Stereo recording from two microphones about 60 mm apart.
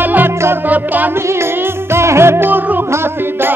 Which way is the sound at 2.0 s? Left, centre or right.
Right.